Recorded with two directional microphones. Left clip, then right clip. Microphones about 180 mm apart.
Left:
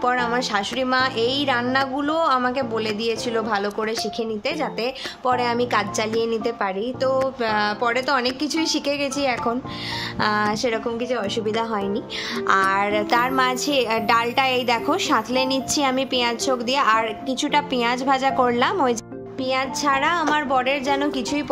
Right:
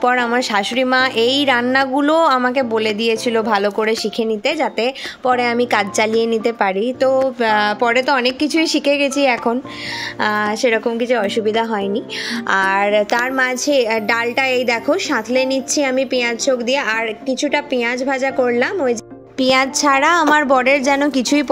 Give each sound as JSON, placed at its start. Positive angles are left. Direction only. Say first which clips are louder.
{"t": 0.0, "sound": "a woman's voice", "louder": "right 5 dB", "side_deg": -25}
{"t": 19.4, "sound": "a woman's voice", "louder": "right 8 dB", "side_deg": -40}